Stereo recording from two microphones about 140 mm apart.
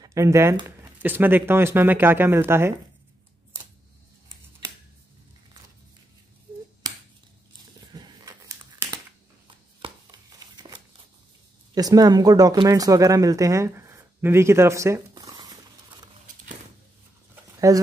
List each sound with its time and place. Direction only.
0.0 s speech: 20° right (ahead or behind)
6.8 s finger snapping: 30° right (ahead or behind)
7.9 s a sound: 30° right (ahead or behind)
10.4 s a sound: 30° right (ahead or behind)
11.7 s speech: 25° right (ahead or behind)
17.7 s speech: 25° right (ahead or behind)